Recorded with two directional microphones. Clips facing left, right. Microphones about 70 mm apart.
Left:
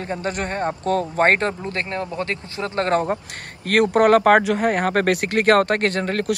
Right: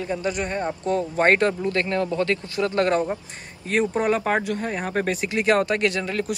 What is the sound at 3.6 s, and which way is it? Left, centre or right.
Speech, left.